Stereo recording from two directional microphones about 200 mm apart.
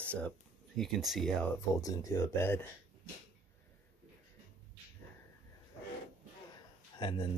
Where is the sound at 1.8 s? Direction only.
15° left (ahead or behind).